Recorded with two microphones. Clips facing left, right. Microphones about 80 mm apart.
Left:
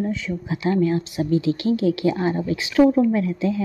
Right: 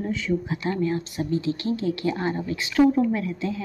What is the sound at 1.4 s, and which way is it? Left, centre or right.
Speech, right.